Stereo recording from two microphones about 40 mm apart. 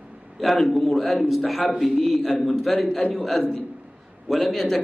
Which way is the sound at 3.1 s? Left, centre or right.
Centre.